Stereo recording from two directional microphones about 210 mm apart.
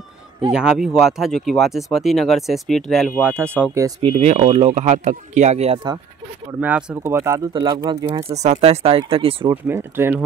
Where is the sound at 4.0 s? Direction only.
30° right (ahead or behind).